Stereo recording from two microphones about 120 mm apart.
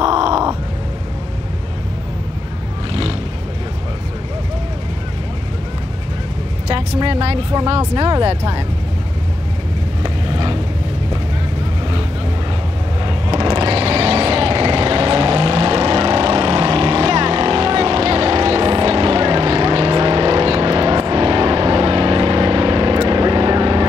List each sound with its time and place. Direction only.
0.0 s grunt: 40° right (ahead or behind)
2.9 s vehicle: 50° right (ahead or behind)
7.0 s a sound: 50° right (ahead or behind)
7.9 s speech: 40° right (ahead or behind)
10.0 s vehicle: 45° right (ahead or behind)
13.0 s vehicle: 40° right (ahead or behind)